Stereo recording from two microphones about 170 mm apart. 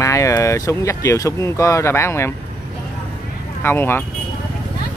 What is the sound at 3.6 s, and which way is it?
Speech, 15° left (ahead or behind).